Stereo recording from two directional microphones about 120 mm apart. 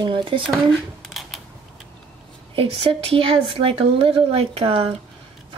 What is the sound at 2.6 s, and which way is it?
Speech, 45° right (ahead or behind).